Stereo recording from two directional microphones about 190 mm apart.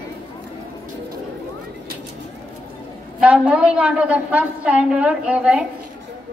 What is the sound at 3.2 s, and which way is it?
A woman's voice, 5° right (ahead or behind).